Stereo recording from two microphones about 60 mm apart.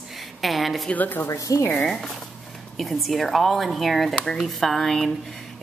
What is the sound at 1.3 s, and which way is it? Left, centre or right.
Speech, left.